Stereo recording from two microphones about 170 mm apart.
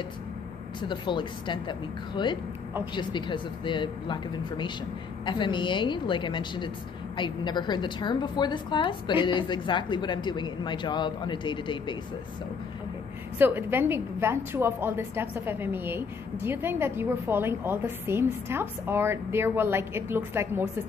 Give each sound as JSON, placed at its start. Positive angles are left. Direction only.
{"t": 0.7, "sound": "a woman's voice", "side_deg": 30}
{"t": 13.4, "sound": "a woman's voice", "side_deg": -10}